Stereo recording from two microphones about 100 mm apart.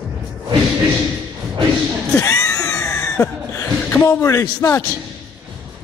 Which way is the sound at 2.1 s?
35° left (ahead or behind).